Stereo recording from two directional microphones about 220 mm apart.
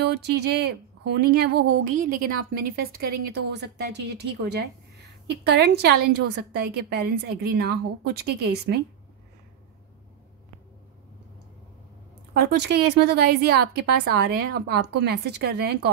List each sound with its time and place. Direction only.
0.0 s a woman's voice: 50° right (ahead or behind)
12.4 s a woman's voice: 50° right (ahead or behind)